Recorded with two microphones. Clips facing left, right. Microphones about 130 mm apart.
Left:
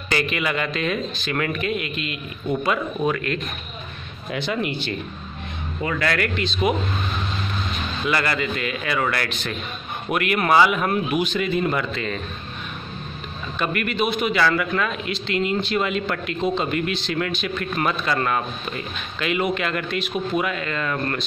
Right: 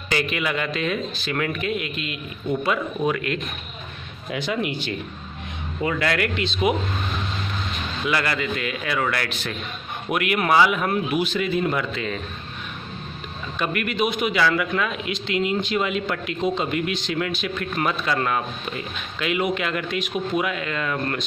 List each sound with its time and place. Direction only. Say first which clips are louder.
0.1 s speech: left 1 dB; 5° right (ahead or behind)
3.2 s a man's voice: even; 15° right (ahead or behind)
5.8 s a man's voice: even; 20° right (ahead or behind)
8.1 s speech: left 1 dB; centre (ahead or behind)
13.6 s a man's voice: even; 10° right (ahead or behind)